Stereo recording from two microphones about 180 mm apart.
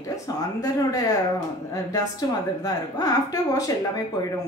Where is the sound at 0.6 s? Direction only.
20° left (ahead or behind).